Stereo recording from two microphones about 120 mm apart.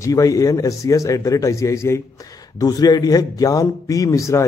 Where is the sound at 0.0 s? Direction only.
30° left (ahead or behind).